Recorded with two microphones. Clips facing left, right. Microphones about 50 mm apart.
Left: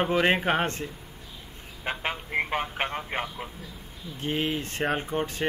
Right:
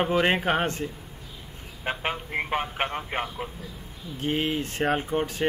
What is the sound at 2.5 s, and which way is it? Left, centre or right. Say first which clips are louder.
Speech: right 1 dB; centre.